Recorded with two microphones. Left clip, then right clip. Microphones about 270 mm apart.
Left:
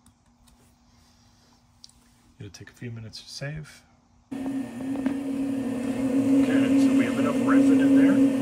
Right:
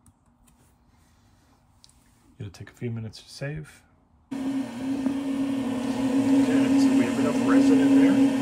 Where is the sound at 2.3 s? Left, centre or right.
Centre.